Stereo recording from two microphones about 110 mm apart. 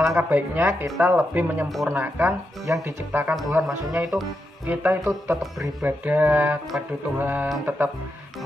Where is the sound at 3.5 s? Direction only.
5° right (ahead or behind).